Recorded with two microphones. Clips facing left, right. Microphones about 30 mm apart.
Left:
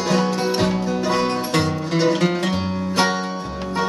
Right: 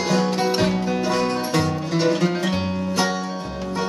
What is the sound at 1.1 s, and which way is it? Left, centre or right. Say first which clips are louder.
Music: left 2 dB; left.